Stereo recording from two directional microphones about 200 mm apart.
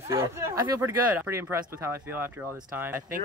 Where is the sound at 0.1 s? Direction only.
15° right (ahead or behind).